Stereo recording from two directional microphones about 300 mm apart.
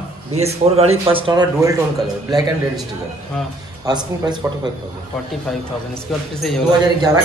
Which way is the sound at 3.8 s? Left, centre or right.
Centre.